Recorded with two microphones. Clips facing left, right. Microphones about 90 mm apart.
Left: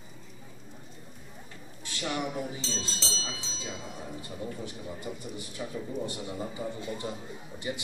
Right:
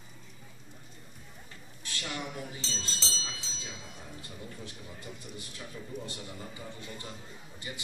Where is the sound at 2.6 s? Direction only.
Centre (ahead or behind).